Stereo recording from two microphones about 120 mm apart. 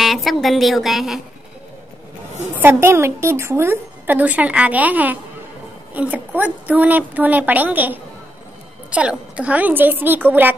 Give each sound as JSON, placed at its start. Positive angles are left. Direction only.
{"t": 0.0, "sound": "a woman's voice", "side_deg": 0}
{"t": 2.6, "sound": "a woman's voice", "side_deg": -20}